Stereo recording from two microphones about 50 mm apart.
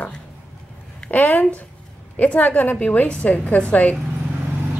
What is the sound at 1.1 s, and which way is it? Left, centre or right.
A woman's voice, left.